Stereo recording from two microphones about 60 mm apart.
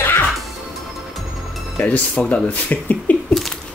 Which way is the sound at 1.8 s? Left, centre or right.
Left.